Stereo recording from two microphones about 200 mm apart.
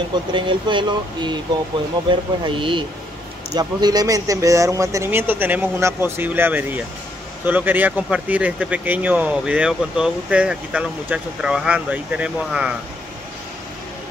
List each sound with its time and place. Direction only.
0.1 s speech: 25° right (ahead or behind)
2.4 s speech: 25° right (ahead or behind); by 12.7 s 5° right (ahead or behind)